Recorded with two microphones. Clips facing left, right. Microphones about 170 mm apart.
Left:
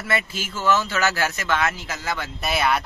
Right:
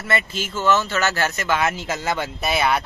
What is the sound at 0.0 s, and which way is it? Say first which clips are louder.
Speech: right 2 dB; 5° left (ahead or behind).